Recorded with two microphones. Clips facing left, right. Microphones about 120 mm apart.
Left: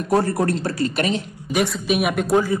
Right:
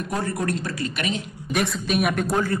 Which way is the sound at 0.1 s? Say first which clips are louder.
Left 8 dB; 35° left (ahead or behind).